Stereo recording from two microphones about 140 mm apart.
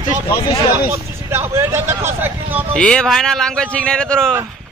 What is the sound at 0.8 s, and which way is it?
Speech, 15° right (ahead or behind).